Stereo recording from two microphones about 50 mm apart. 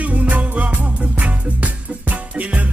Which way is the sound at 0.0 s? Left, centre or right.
Right.